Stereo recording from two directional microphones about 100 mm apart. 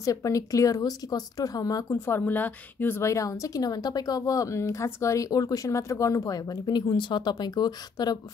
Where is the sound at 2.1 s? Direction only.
20° left (ahead or behind).